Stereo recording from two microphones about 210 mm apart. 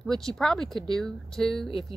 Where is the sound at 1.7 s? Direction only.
25° left (ahead or behind).